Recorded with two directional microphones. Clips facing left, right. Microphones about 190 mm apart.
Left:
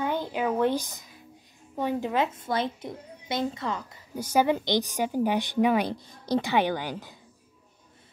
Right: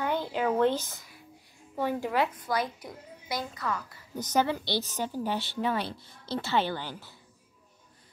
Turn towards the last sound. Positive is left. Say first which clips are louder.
# left 5 dB
turn(degrees=15)  # may be behind; listen again after turning